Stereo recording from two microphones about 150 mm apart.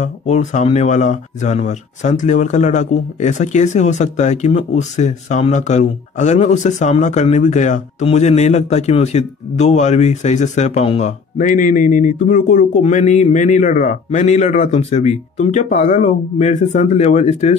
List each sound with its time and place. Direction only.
0.0 s speech: 50° left (ahead or behind)